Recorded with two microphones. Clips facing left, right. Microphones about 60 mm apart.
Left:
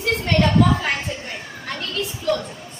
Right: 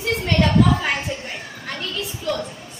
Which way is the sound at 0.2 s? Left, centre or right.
Centre.